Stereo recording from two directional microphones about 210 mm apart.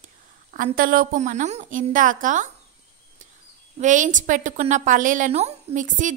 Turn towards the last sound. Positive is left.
turn(degrees=-35)  # may be behind; listen again after turning